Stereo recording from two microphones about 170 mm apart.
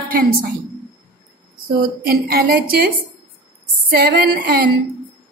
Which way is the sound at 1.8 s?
65° right (ahead or behind).